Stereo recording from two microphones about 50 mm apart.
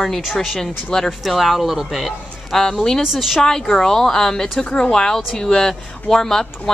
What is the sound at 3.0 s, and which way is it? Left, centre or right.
Speech, centre.